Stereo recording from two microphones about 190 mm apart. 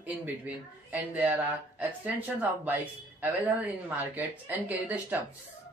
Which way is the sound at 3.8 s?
10° right (ahead or behind).